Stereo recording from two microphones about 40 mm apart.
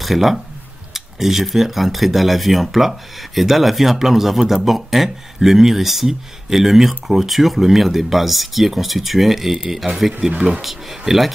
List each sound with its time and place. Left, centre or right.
0.0 s speech: centre
10.3 s speech: right
10.6 s speech: centre